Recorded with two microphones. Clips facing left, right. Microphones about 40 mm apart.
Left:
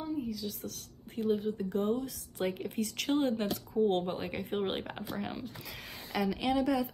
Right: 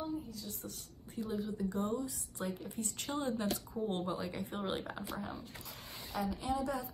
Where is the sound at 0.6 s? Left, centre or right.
Left.